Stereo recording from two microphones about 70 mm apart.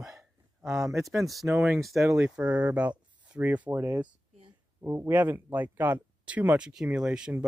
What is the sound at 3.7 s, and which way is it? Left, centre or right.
Speech, right.